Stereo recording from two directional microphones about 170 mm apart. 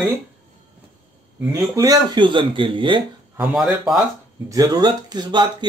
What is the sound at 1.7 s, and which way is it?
Speech, 20° right (ahead or behind).